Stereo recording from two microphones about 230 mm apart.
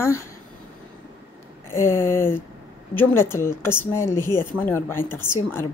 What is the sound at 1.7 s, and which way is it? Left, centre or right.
A woman's voice, centre.